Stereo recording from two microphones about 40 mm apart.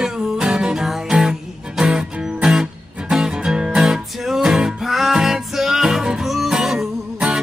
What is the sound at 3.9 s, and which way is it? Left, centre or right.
Music, centre.